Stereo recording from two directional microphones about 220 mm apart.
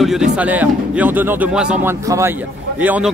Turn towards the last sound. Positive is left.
turn(degrees=-10)  # may be behind; listen again after turning